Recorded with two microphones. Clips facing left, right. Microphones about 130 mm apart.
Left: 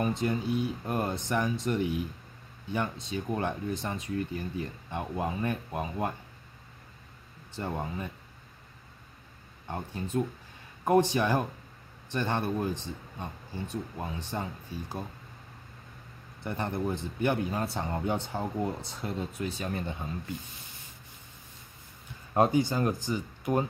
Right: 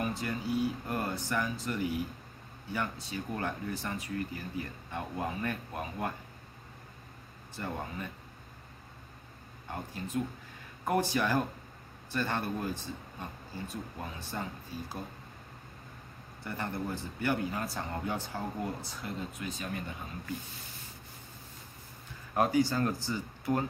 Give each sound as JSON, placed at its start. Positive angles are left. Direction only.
{"t": 0.0, "sound": "speech", "side_deg": 20}
{"t": 7.5, "sound": "speech", "side_deg": 20}
{"t": 10.1, "sound": "speech", "side_deg": 30}
{"t": 16.4, "sound": "speech", "side_deg": 20}
{"t": 22.3, "sound": "speech", "side_deg": 25}